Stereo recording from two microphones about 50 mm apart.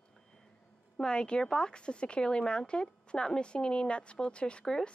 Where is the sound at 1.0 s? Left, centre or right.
Centre.